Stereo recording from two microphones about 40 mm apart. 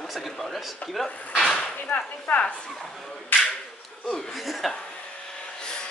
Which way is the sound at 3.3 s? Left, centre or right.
Left.